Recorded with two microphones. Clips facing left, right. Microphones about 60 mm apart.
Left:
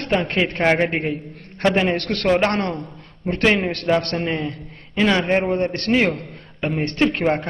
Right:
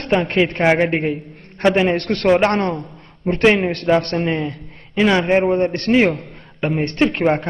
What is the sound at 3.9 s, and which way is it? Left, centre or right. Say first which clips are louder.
A man's voice: right 3 dB; centre.